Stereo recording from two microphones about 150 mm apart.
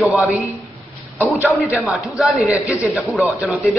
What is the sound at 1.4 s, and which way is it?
Speech, 5° right (ahead or behind).